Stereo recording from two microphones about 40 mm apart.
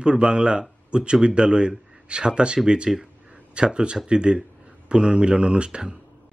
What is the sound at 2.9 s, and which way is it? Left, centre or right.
Speech, centre.